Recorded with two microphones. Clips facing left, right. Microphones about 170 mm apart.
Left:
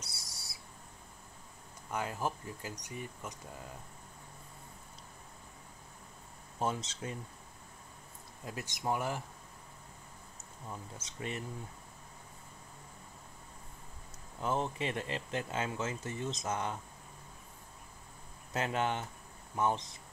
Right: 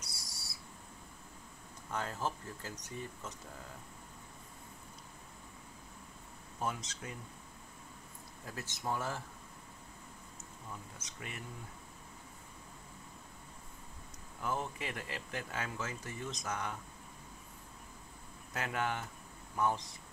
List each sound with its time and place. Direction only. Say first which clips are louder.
0.0 s owl: even; 25° left (ahead or behind)
1.9 s speech: left 2 dB; 10° left (ahead or behind)
6.6 s speech: left 4 dB; 25° left (ahead or behind)
8.5 s speech: left 3 dB; 15° left (ahead or behind)
11.0 s speech: left 7 dB; 30° left (ahead or behind)
14.4 s speech: left 4 dB; 25° left (ahead or behind)
18.5 s speech: left 4 dB; 25° left (ahead or behind)